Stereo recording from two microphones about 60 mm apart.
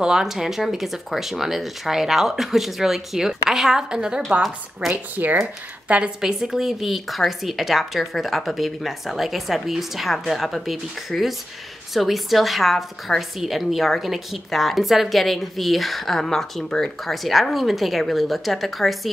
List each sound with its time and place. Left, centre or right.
0.0 s a woman's voice: centre
4.9 s a woman's voice: right; by 18.9 s centre